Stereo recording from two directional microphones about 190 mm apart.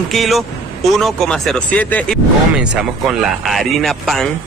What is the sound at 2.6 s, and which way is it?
Speech, 5° right (ahead or behind).